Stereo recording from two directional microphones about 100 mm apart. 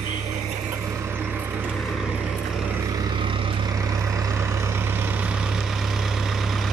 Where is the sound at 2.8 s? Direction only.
35° right (ahead or behind).